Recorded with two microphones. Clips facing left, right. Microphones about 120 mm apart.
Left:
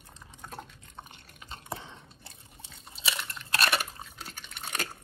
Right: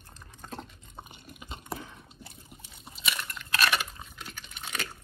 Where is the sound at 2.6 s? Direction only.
25° left (ahead or behind).